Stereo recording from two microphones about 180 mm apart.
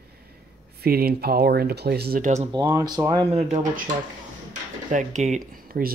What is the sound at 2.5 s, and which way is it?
Speech, 25° right (ahead or behind).